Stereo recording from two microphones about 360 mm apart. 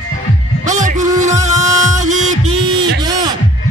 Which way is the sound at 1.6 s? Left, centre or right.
Centre.